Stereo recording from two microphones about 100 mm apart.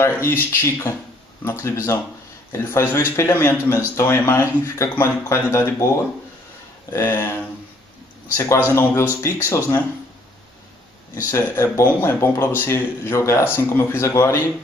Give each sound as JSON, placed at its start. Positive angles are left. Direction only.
{"t": 0.0, "sound": "a man's voice", "side_deg": 25}
{"t": 6.9, "sound": "a man's voice", "side_deg": 30}
{"t": 11.2, "sound": "a man's voice", "side_deg": 30}